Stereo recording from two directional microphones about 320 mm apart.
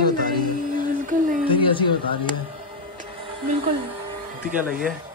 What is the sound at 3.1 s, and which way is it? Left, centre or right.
Music, centre.